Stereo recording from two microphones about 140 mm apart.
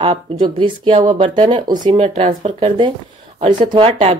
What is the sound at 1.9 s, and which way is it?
Speech, 50° right (ahead or behind).